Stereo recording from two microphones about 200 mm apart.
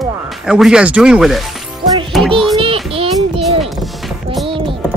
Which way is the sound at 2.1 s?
Centre (ahead or behind).